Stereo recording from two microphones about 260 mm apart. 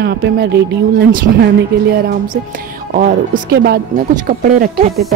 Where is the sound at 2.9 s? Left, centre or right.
Right.